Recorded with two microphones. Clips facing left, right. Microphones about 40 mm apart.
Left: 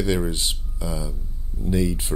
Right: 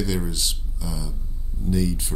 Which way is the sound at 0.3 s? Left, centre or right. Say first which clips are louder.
Left 2 dB; left.